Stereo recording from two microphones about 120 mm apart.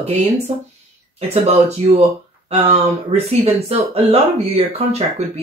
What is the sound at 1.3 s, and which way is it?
Speech, 55° right (ahead or behind).